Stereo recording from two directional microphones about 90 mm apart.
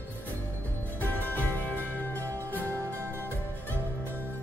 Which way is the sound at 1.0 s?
20° left (ahead or behind).